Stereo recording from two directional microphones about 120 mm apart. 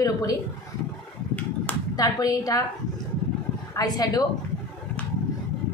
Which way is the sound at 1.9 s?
30° left (ahead or behind).